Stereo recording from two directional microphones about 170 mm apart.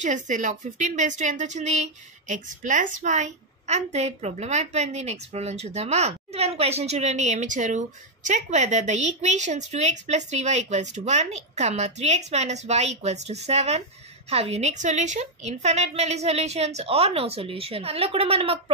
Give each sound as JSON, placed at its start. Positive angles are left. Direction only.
{"t": 0.0, "sound": "a woman's voice", "side_deg": -45}